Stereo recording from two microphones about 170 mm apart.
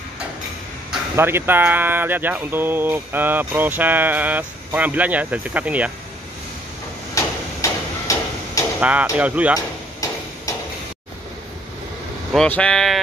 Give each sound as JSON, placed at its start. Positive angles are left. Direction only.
{"t": 1.1, "sound": "speech", "side_deg": -15}
{"t": 7.2, "sound": "hammer", "side_deg": 20}
{"t": 8.7, "sound": "speech", "side_deg": -5}
{"t": 12.4, "sound": "speech", "side_deg": 5}